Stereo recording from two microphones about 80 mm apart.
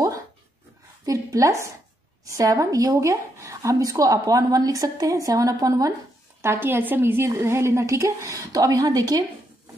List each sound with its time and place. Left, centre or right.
1.0 s a woman's voice: right
6.4 s a woman's voice: right